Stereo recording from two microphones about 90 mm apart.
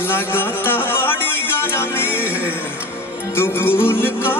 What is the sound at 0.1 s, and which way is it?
Music, 25° left (ahead or behind).